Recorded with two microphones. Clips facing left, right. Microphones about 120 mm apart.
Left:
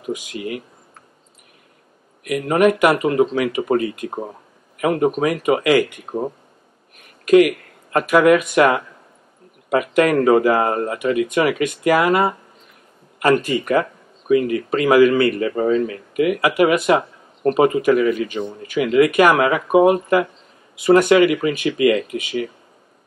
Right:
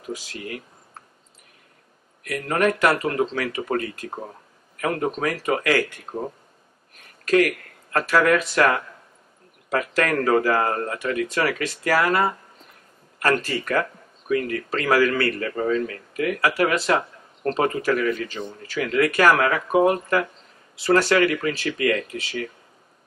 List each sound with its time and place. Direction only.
0.3 s speech: 15° left (ahead or behind)
2.2 s speech: 15° left (ahead or behind)
7.2 s speech: 15° left (ahead or behind)